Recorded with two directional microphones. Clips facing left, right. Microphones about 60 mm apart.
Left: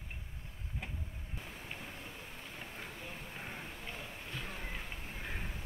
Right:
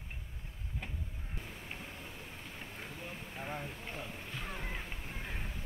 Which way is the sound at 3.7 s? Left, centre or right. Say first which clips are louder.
Right 2 dB; right.